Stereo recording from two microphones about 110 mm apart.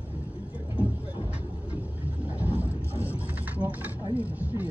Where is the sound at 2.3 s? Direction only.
15° right (ahead or behind).